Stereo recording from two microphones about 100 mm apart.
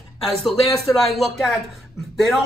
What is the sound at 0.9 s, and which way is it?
Speech, centre (ahead or behind).